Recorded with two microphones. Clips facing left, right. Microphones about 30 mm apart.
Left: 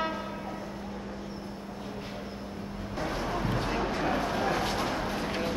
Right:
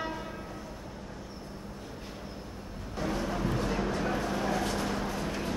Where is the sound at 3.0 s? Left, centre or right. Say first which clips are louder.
Even; centre.